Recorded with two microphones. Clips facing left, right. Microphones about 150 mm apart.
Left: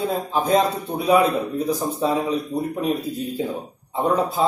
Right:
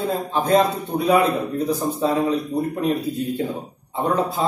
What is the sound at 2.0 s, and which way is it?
Speech, 5° left (ahead or behind).